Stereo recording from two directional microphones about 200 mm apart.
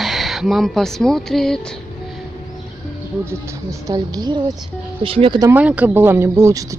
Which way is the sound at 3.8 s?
20° right (ahead or behind).